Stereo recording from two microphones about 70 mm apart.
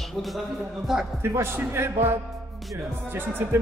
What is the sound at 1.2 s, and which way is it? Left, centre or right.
Speech, right.